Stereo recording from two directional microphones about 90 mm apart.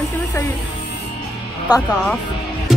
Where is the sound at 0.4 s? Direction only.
30° left (ahead or behind).